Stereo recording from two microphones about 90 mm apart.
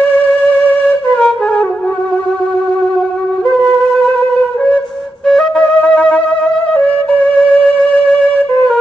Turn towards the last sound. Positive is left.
turn(degrees=15)  # may be behind; listen again after turning